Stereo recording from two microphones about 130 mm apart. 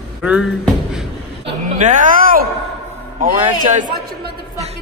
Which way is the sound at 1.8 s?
75° right (ahead or behind).